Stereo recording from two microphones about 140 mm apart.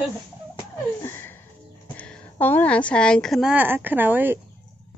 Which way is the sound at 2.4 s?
10° left (ahead or behind).